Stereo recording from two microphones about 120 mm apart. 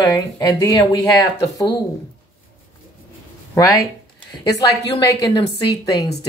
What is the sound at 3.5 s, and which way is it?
Speech, 30° left (ahead or behind).